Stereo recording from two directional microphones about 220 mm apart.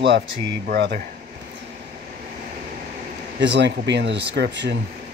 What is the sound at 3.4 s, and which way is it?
A man's voice, 50° right (ahead or behind).